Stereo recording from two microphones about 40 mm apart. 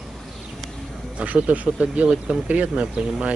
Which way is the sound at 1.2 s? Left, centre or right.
Right.